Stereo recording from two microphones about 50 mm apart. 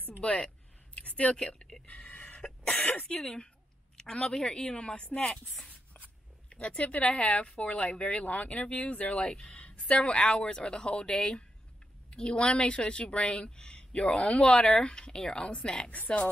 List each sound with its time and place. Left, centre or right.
0.2 s speech: left
0.9 s a sound: left
1.4 s speech: centre
1.9 s throat clearing: left
3.1 s a woman's voice: centre
9.2 s a woman's voice: centre
9.5 s a woman's voice: left